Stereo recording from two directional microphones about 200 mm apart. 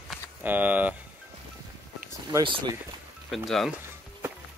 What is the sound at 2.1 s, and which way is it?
Speech, 15° right (ahead or behind).